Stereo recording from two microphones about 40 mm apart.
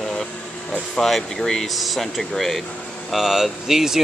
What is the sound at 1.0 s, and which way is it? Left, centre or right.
Speech, centre.